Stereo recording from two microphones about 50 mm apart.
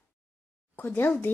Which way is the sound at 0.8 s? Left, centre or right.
Left.